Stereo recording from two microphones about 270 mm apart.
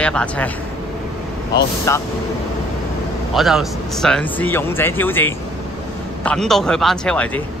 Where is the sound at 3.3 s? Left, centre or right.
Centre.